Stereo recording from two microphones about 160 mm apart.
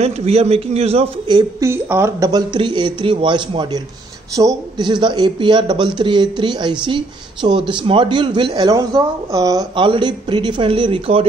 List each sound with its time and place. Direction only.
0.0 s a man's voice: 40° right (ahead or behind)
1.6 s speech: 15° right (ahead or behind); by 11.2 s 35° right (ahead or behind)